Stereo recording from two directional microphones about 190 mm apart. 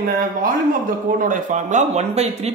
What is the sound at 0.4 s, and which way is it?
A man's voice, 45° right (ahead or behind).